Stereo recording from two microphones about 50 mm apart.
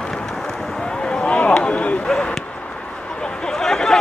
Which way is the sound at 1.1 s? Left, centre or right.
Left.